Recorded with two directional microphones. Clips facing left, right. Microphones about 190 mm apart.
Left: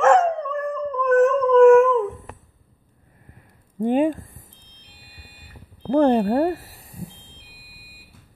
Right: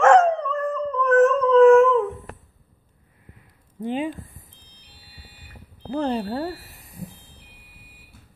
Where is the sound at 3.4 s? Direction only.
50° left (ahead or behind).